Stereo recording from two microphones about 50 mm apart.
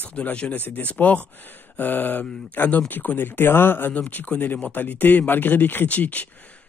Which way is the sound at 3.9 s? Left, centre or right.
Left.